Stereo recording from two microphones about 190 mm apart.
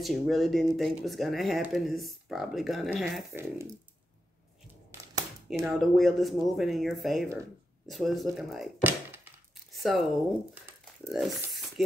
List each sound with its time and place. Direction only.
0.0 s speech: centre (ahead or behind)
5.5 s speech: centre (ahead or behind)